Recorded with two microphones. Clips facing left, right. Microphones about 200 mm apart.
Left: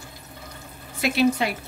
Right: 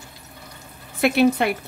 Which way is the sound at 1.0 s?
55° right (ahead or behind).